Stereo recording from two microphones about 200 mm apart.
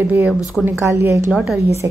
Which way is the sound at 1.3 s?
5° right (ahead or behind).